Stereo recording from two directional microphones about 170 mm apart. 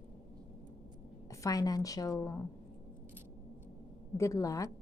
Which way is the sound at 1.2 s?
20° left (ahead or behind).